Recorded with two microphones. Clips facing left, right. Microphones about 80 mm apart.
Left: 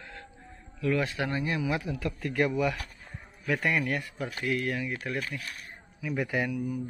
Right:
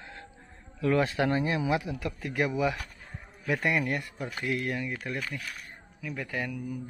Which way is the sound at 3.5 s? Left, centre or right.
Centre.